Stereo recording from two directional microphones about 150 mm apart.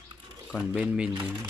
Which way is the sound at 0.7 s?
10° right (ahead or behind).